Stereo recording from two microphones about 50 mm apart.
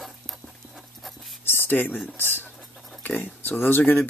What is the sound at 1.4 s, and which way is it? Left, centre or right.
Speech, left.